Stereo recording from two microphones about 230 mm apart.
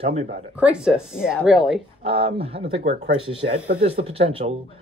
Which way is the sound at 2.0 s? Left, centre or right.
Right.